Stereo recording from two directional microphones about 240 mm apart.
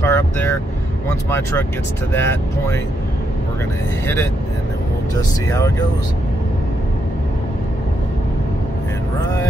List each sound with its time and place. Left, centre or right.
0.0 s speech: centre
5.5 s speech: centre